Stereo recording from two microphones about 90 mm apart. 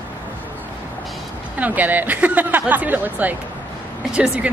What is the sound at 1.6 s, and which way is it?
A woman's voice, 20° right (ahead or behind).